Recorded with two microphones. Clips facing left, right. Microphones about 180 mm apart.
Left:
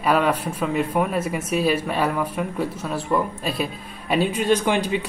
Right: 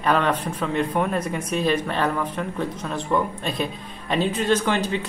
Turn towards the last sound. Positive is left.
turn(degrees=10)  # may be behind; listen again after turning